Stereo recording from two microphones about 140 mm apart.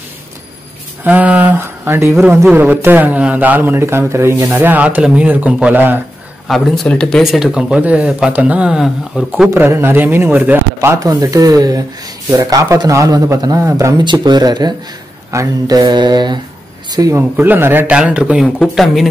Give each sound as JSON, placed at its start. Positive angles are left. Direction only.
{"t": 1.0, "sound": "speech", "side_deg": -10}
{"t": 6.4, "sound": "speech", "side_deg": 0}
{"t": 9.5, "sound": "a man's voice", "side_deg": -20}
{"t": 15.3, "sound": "mantra", "side_deg": -25}
{"t": 16.9, "sound": "speech", "side_deg": -25}